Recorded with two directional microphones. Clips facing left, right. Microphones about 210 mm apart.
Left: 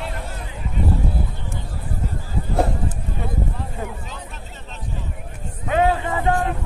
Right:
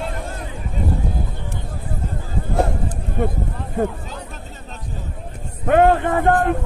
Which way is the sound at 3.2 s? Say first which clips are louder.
Right 10 dB; 50° right (ahead or behind).